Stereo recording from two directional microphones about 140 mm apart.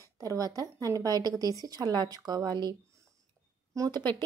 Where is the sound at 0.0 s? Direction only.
25° right (ahead or behind).